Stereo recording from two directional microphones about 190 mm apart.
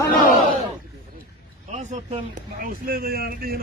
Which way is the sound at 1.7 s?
35° right (ahead or behind).